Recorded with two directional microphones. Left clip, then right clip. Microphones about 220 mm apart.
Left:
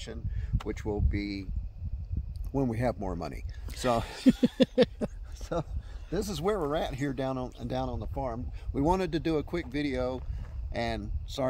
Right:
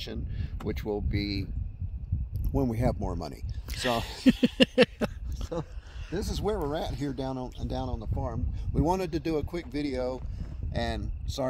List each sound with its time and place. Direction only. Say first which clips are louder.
0.0 s a sound: right 4 dB; 45° right (ahead or behind)
0.7 s speech: right 2 dB; 45° right (ahead or behind)
2.5 s speech: right 1 dB; 25° right (ahead or behind); by 4.8 s centre (ahead or behind)
5.4 s a sound: left 2 dB; 15° left (ahead or behind)
6.1 s speech: left 1 dB; 5° left (ahead or behind)
8.7 s speech: even; 20° right (ahead or behind)